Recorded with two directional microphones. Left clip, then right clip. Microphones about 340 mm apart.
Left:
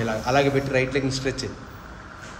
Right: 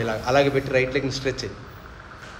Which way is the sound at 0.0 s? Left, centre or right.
Centre.